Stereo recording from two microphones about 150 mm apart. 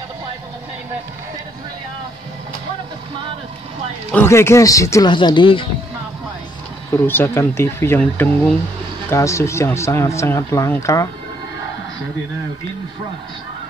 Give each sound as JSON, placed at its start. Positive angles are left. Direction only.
{"t": 4.1, "sound": "speech", "side_deg": 15}
{"t": 5.1, "sound": "speech", "side_deg": 30}
{"t": 6.9, "sound": "speech", "side_deg": 15}